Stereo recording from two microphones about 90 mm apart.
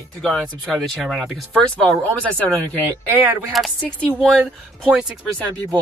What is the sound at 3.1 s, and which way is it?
Speech, 25° right (ahead or behind).